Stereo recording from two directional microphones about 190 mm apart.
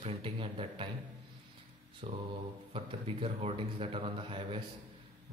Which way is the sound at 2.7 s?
30° right (ahead or behind).